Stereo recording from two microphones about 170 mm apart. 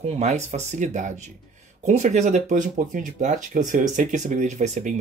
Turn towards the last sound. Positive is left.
turn(degrees=-45)  # may be behind; listen again after turning